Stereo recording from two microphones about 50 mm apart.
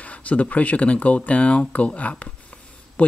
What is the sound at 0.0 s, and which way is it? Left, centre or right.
Speech, left.